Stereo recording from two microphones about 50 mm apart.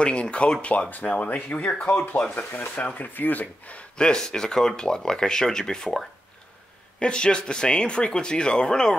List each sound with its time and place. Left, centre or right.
0.0 s speech: left
4.0 s speech: centre